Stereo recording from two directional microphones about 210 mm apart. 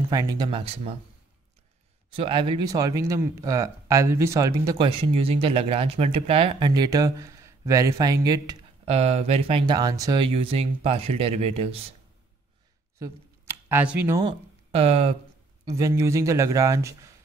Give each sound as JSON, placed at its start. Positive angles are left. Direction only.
{"t": 0.1, "sound": "speech", "side_deg": -15}
{"t": 2.0, "sound": "speech", "side_deg": -25}
{"t": 8.8, "sound": "speech", "side_deg": -30}
{"t": 13.0, "sound": "a sound", "side_deg": -10}
{"t": 14.2, "sound": "speech", "side_deg": -30}
{"t": 15.6, "sound": "speech", "side_deg": -15}